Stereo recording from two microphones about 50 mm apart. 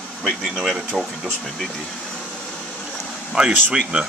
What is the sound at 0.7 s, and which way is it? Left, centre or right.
Speech, centre.